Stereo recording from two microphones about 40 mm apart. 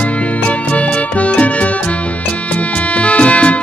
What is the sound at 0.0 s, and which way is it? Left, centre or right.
Music, left.